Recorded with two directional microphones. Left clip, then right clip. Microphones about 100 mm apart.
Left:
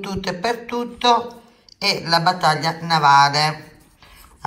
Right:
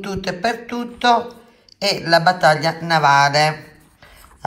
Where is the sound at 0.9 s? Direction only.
25° right (ahead or behind).